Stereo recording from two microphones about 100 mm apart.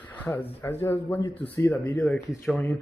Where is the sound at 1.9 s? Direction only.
5° left (ahead or behind).